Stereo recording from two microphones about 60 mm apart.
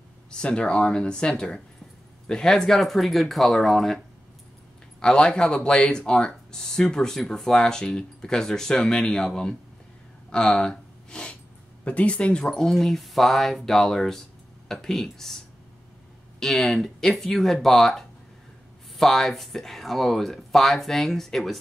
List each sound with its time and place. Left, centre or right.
0.3 s speech: centre
5.0 s speech: centre
12.4 s speech: centre